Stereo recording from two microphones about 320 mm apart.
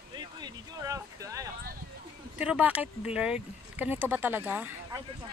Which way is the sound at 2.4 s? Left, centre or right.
Centre.